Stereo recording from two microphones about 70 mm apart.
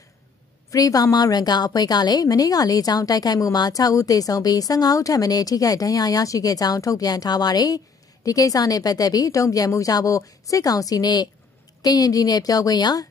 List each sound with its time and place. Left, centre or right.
0.7 s a woman's voice: left
1.1 s speech: left